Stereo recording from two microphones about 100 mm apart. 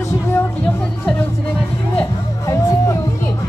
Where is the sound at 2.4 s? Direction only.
35° left (ahead or behind).